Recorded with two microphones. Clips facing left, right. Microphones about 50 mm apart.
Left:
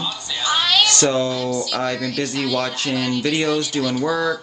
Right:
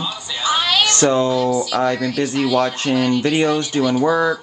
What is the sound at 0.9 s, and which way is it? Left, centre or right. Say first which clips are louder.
Speech: right 3 dB; right.